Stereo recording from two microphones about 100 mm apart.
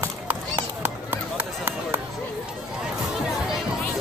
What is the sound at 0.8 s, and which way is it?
Run, 20° right (ahead or behind).